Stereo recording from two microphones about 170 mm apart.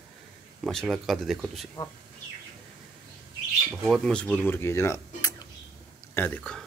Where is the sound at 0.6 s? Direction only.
Centre (ahead or behind).